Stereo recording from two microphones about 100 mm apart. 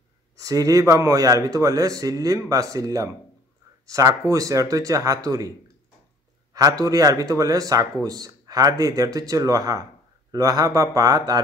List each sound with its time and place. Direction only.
0.4 s speech: 35° right (ahead or behind)
6.5 s speech: 35° right (ahead or behind)